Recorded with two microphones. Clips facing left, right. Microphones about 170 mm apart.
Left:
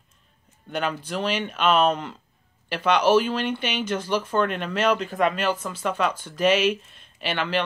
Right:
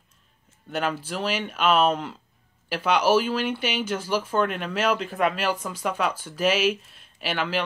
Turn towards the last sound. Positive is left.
turn(degrees=-5)  # may be behind; listen again after turning